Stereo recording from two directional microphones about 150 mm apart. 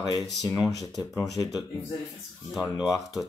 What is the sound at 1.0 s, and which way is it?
Speech, 20° left (ahead or behind).